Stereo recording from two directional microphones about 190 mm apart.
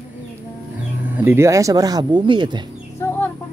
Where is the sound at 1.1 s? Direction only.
10° right (ahead or behind).